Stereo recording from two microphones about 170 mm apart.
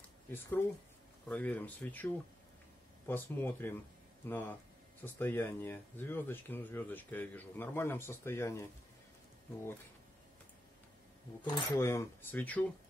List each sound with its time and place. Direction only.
0.3 s speech: 15° left (ahead or behind)
3.1 s speech: 10° left (ahead or behind)
11.4 s speech: 30° left (ahead or behind)
11.8 s speech: 15° left (ahead or behind)